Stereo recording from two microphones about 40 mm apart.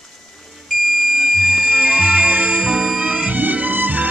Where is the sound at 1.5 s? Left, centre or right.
Right.